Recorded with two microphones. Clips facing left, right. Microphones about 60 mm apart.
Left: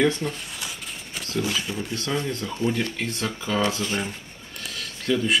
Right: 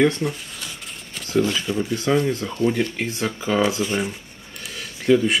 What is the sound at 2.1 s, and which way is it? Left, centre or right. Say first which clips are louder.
Speech: right 6 dB; centre.